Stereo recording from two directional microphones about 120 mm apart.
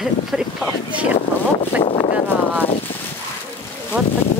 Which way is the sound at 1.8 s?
55° left (ahead or behind).